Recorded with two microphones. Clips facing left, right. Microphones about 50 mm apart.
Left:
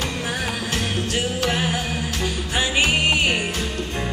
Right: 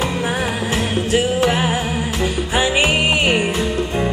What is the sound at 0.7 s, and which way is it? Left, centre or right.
Music, centre.